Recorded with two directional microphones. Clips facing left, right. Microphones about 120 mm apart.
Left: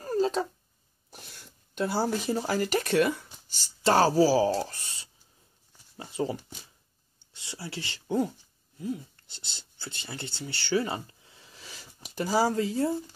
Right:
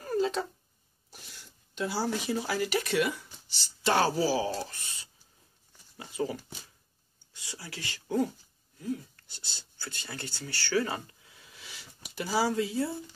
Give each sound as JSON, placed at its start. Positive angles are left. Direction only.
{"t": 0.0, "sound": "a sound", "side_deg": 35}
{"t": 1.1, "sound": "speech", "side_deg": 50}
{"t": 7.3, "sound": "speech", "side_deg": 25}